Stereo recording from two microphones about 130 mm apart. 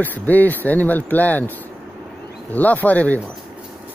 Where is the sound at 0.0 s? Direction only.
15° left (ahead or behind).